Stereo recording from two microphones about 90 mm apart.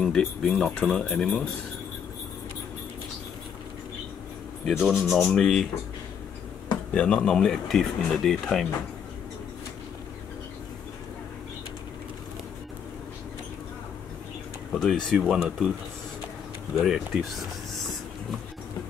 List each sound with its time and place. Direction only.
0.0 s speech: 5° left (ahead or behind)
4.6 s speech: centre (ahead or behind)
6.9 s speech: 10° left (ahead or behind)
14.7 s speech: 5° left (ahead or behind)
15.1 s speech: 10° right (ahead or behind)
16.7 s speech: 5° right (ahead or behind)